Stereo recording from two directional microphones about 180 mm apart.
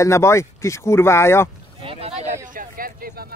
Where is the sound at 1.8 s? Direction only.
35° right (ahead or behind).